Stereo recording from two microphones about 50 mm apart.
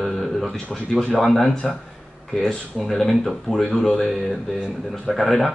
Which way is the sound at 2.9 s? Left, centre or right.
Centre.